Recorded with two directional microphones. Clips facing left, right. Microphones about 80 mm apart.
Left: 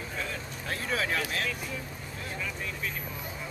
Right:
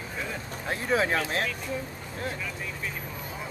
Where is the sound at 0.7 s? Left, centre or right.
Right.